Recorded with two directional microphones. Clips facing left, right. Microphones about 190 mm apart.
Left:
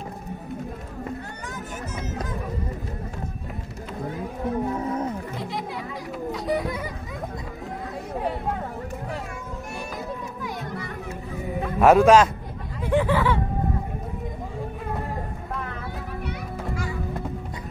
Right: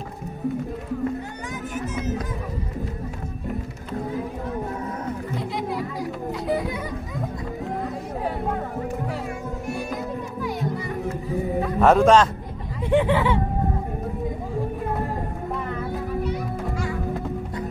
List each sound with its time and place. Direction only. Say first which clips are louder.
5.3 s children playing: right 4 dB; centre (ahead or behind)
11.6 s a man's voice: left 1 dB; centre (ahead or behind)
12.9 s speech: right 2 dB; 20° right (ahead or behind)